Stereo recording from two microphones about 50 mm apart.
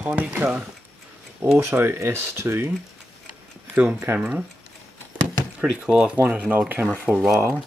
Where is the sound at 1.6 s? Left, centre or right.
Right.